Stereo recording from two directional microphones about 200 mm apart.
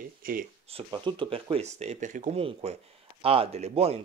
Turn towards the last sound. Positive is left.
turn(degrees=-30)  # may be behind; listen again after turning